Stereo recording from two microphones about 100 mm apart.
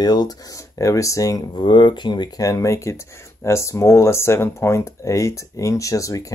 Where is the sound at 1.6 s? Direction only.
50° left (ahead or behind).